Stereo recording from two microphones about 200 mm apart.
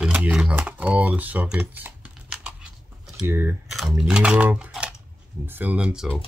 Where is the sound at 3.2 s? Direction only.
10° right (ahead or behind).